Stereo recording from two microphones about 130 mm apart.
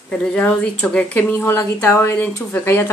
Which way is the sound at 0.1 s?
5° left (ahead or behind).